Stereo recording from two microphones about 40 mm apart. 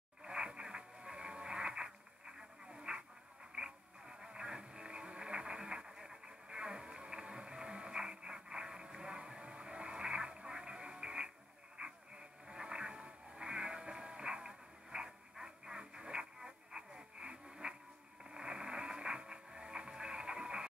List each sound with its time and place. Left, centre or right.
0.2 s radio: centre
5.9 s music: centre
8.0 s a sound: centre
11.8 s radio: right
12.4 s music: right
18.3 s radio: centre